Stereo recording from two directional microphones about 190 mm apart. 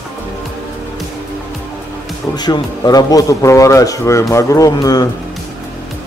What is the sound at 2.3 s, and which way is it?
A man's voice, 20° left (ahead or behind).